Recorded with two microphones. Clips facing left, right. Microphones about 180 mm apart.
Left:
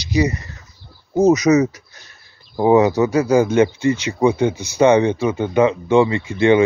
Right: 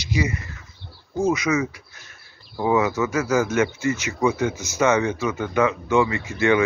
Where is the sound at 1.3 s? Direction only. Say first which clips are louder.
Left 8 dB; 40° left (ahead or behind).